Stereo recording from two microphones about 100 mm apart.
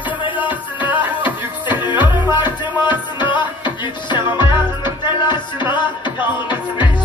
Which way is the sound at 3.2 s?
50° left (ahead or behind).